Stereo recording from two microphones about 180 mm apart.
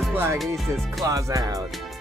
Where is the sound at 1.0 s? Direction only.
20° right (ahead or behind).